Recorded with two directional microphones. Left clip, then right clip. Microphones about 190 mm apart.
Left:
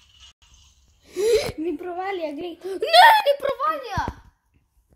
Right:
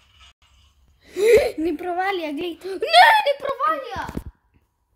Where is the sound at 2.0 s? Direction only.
60° right (ahead or behind).